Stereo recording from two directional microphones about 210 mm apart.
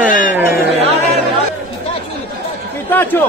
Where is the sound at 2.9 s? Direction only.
10° left (ahead or behind).